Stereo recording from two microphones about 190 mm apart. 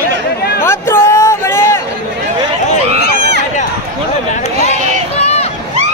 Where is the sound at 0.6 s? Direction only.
15° left (ahead or behind).